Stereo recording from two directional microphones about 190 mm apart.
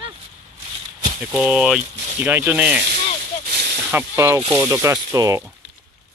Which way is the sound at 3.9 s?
10° right (ahead or behind).